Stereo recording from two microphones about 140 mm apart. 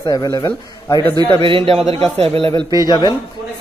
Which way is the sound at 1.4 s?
40° right (ahead or behind).